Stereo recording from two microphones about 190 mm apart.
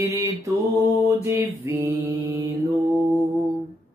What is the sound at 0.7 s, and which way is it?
Mantra, 15° right (ahead or behind).